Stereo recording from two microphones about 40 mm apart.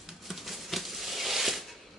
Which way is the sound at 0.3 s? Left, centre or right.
Centre.